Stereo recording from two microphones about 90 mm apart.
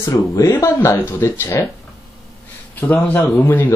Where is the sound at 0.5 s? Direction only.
30° left (ahead or behind).